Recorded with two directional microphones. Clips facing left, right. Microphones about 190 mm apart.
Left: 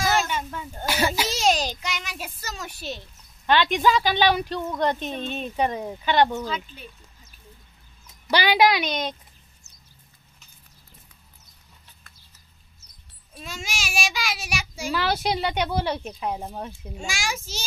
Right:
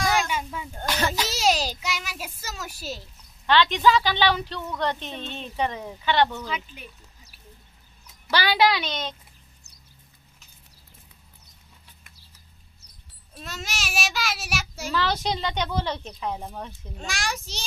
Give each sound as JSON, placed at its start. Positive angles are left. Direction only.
{"t": 0.0, "sound": "a sound", "side_deg": 5}
{"t": 0.8, "sound": "a sound", "side_deg": 10}
{"t": 1.3, "sound": "a sound", "side_deg": -5}
{"t": 3.4, "sound": "speech", "side_deg": 15}
{"t": 5.7, "sound": "speech", "side_deg": 30}
{"t": 6.0, "sound": "speech", "side_deg": 15}
{"t": 6.5, "sound": "speech", "side_deg": -10}
{"t": 8.3, "sound": "speech", "side_deg": 15}
{"t": 13.3, "sound": "child singing", "side_deg": 0}
{"t": 14.9, "sound": "speech", "side_deg": 10}
{"t": 17.0, "sound": "child singing", "side_deg": 0}